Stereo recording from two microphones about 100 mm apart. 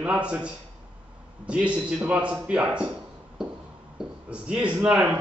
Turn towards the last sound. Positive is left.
turn(degrees=-10)  # may be behind; listen again after turning